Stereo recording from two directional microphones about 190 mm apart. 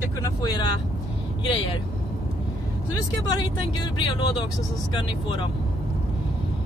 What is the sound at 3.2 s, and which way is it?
Speech, 20° left (ahead or behind).